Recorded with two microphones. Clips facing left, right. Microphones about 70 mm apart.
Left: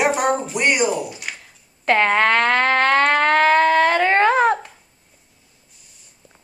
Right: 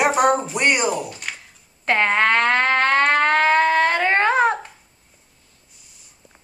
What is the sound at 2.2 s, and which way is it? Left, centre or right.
Music, centre.